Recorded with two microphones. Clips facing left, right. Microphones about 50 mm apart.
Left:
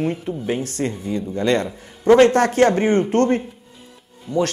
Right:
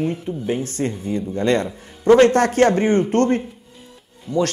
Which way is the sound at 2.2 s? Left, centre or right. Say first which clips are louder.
Even; left.